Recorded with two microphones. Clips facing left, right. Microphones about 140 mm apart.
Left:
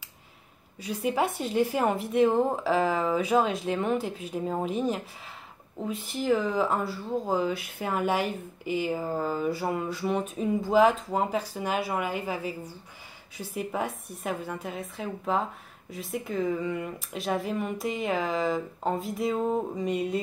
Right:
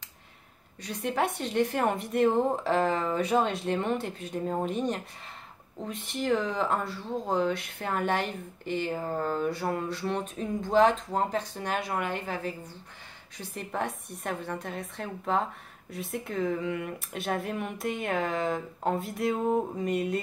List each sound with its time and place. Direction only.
0.7 s speech: 5° left (ahead or behind)